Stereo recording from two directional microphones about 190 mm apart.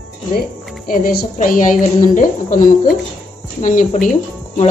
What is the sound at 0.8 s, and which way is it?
A woman's voice, 50° left (ahead or behind).